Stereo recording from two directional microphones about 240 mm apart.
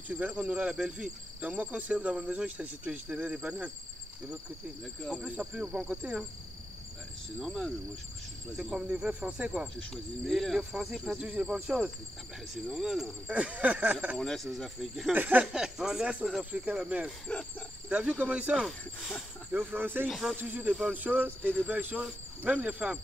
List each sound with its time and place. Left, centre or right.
0.1 s speech: centre
5.0 s speech: centre
7.3 s speech: centre